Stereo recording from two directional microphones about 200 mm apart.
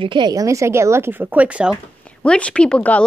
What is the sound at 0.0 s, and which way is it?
A woman's voice, 25° right (ahead or behind).